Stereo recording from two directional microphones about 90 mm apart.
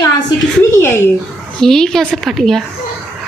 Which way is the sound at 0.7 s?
30° left (ahead or behind).